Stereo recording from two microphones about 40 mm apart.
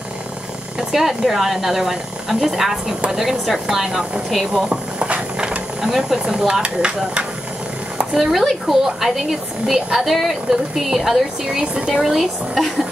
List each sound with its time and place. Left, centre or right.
0.7 s speech: centre
4.6 s mechanisms: right
5.8 s speech: centre
8.0 s a sound: centre
8.3 s speech: centre
11.9 s speech: centre